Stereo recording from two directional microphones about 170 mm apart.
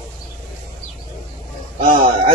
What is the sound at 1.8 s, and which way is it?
Speech, 30° right (ahead or behind).